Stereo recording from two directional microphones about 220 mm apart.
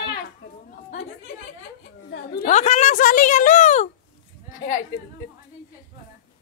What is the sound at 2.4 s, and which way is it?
A woman's voice, 30° left (ahead or behind).